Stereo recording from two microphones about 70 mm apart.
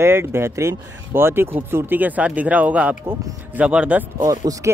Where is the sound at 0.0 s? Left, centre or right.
Right; by 4.0 s centre.